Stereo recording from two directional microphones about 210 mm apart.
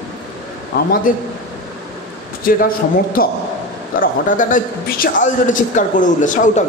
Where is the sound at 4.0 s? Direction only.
40° left (ahead or behind).